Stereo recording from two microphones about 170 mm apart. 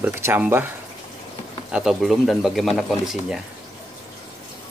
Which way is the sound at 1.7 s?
Centre (ahead or behind).